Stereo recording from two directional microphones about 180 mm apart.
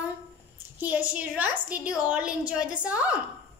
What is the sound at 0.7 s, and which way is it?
Child singing, 10° right (ahead or behind).